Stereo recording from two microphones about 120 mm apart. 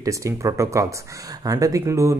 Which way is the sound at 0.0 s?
25° right (ahead or behind).